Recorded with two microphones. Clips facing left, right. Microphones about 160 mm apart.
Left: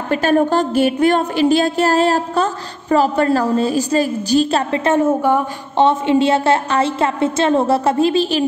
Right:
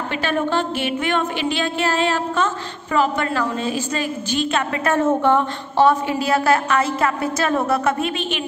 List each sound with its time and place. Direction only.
0.1 s a woman's voice: 40° left (ahead or behind)
4.9 s a woman's voice: 10° left (ahead or behind)
5.9 s a woman's voice: 25° left (ahead or behind)